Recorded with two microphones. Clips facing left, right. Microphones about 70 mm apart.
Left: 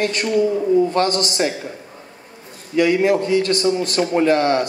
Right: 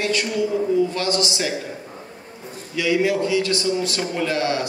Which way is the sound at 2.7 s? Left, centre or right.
Left.